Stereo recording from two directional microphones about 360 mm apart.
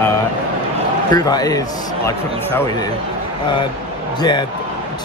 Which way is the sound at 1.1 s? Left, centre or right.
Centre.